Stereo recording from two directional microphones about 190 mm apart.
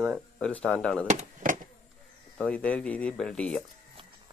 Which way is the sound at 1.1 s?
45° right (ahead or behind).